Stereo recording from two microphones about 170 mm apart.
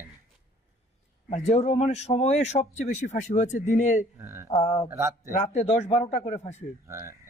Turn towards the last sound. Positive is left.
turn(degrees=-15)  # may be behind; listen again after turning